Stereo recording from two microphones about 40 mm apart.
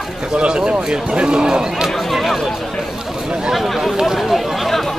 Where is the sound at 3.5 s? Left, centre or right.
Centre.